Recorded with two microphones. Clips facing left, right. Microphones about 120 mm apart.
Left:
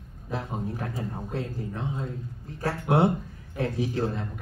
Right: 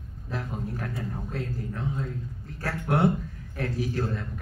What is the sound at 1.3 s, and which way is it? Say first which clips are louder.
Speech: left 2 dB; 25° left (ahead or behind).